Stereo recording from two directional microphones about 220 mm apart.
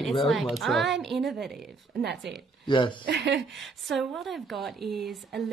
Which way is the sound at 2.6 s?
20° left (ahead or behind).